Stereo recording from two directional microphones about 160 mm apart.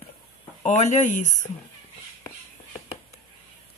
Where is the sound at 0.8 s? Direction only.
45° left (ahead or behind).